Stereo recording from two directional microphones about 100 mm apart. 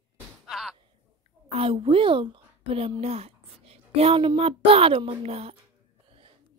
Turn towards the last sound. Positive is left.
turn(degrees=-90)